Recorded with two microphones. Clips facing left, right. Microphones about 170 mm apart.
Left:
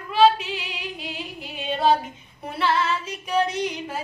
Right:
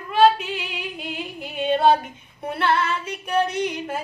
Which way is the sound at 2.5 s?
55° right (ahead or behind).